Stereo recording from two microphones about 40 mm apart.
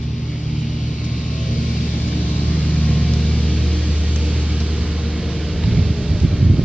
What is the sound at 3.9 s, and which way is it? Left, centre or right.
Vehicle, right.